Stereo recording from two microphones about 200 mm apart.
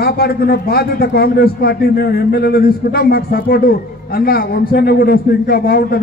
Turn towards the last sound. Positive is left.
turn(degrees=50)  # may be behind; listen again after turning